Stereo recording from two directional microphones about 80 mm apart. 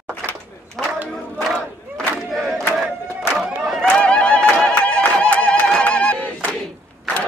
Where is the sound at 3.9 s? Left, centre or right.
Centre.